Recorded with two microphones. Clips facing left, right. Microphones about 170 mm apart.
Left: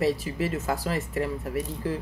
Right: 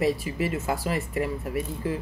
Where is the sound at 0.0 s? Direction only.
15° right (ahead or behind).